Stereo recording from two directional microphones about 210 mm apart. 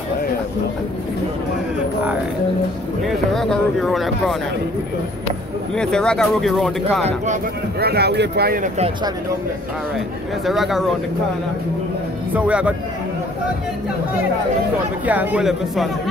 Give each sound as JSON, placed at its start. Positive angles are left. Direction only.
{"t": 3.1, "sound": "speech", "side_deg": 0}
{"t": 5.8, "sound": "speech", "side_deg": 5}
{"t": 7.8, "sound": "speech", "side_deg": -50}
{"t": 10.4, "sound": "speech", "side_deg": 0}
{"t": 12.4, "sound": "speech", "side_deg": -5}
{"t": 15.0, "sound": "speech", "side_deg": -5}